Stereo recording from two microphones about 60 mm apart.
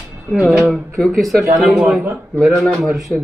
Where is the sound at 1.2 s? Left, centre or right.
Centre.